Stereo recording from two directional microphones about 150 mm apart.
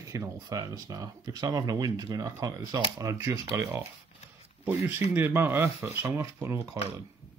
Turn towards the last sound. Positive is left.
turn(degrees=-15)  # may be behind; listen again after turning